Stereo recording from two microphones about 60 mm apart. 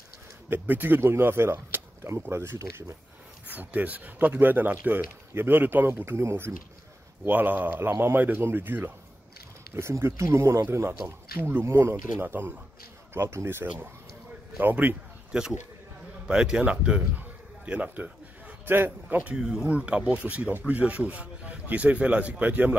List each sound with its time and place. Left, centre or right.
0.5 s speech: right
3.4 s speech: right
7.2 s speech: right
9.8 s speech: right
14.6 s speech: right
15.3 s speech: centre
19.3 s speech: centre; by 22.8 s right